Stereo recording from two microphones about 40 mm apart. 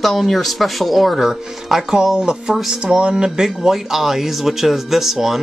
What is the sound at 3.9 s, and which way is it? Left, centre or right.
Speech, centre.